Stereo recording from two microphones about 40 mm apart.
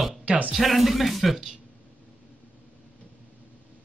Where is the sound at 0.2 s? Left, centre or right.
Right.